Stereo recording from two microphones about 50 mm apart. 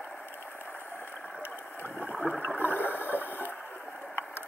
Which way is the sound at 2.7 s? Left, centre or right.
Left.